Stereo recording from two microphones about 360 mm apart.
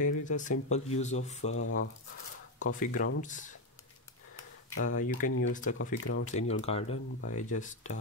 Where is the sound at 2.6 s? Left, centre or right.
Left.